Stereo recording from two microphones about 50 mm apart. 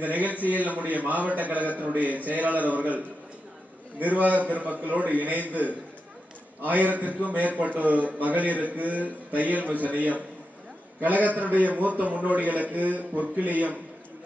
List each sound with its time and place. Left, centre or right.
0.0 s a man's voice: right
4.0 s a man's voice: right